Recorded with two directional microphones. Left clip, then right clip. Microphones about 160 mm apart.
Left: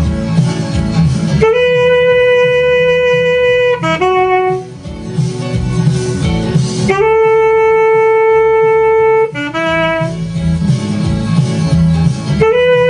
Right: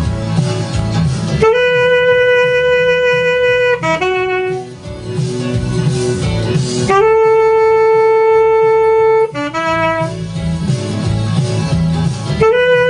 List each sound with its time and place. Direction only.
1.3 s wind instrument: 5° right (ahead or behind)
4.0 s saxophone: 15° right (ahead or behind)
6.9 s wind instrument: 5° right (ahead or behind)
11.7 s music: 10° right (ahead or behind)